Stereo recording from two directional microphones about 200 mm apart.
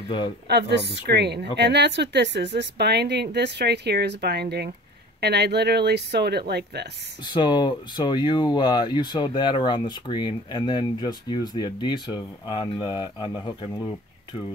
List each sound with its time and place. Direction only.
0.5 s a woman's voice: 55° right (ahead or behind)
7.2 s speech: 20° left (ahead or behind)